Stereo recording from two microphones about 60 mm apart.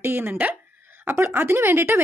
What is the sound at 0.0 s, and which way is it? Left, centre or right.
A woman's voice, right.